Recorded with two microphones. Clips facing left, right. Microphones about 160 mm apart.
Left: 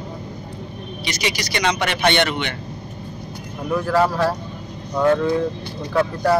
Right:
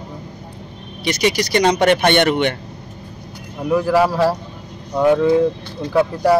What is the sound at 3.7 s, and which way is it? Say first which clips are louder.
Speech: right 3 dB; 10° right (ahead or behind).